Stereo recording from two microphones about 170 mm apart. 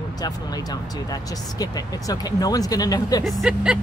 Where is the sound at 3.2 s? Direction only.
Centre (ahead or behind).